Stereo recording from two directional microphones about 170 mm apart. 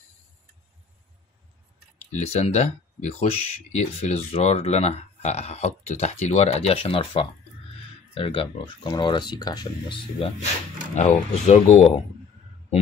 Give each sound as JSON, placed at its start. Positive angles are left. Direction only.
{"t": 2.1, "sound": "speech", "side_deg": 40}